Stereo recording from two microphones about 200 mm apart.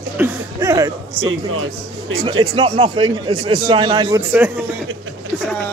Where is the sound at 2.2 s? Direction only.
20° right (ahead or behind).